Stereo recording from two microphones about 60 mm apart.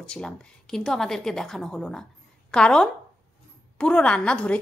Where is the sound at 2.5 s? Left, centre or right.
Centre.